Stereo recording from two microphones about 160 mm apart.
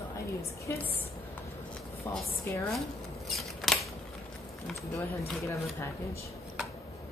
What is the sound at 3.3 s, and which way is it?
Scissors, centre (ahead or behind).